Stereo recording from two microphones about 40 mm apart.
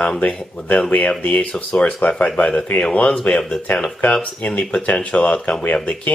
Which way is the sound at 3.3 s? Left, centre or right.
Left.